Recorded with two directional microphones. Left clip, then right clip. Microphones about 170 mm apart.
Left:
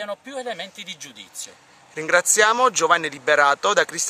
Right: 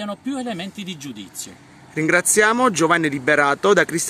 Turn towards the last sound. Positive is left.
turn(degrees=0)  # may be behind; listen again after turning